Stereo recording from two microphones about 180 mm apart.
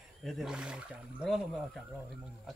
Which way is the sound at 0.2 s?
Centre (ahead or behind).